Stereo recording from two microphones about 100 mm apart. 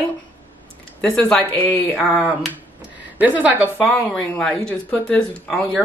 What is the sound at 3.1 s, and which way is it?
Speech, 15° right (ahead or behind).